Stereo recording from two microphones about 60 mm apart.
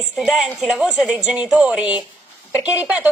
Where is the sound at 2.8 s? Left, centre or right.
Right.